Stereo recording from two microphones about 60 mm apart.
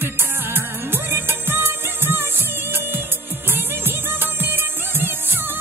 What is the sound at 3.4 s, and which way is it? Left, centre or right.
Music, right.